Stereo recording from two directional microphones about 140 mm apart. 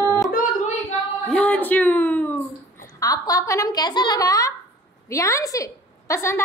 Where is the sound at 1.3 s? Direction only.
10° left (ahead or behind).